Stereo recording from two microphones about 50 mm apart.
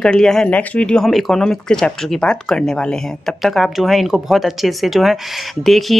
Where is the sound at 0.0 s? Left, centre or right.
Centre.